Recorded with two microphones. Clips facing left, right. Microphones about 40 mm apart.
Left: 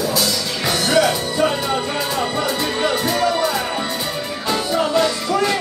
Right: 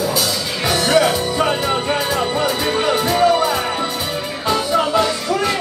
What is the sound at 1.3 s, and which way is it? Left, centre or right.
Music, right.